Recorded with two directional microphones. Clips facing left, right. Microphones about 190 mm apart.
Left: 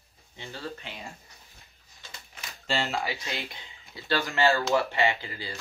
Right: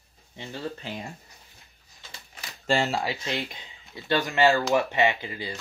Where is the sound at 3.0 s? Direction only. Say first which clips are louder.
Right 4 dB; 20° right (ahead or behind).